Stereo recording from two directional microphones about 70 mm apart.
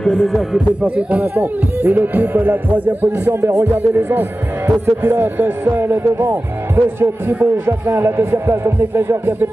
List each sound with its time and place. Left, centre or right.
0.0 s speech: centre
0.8 s speech: centre